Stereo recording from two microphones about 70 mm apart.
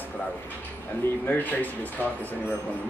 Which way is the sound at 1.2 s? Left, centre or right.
Left.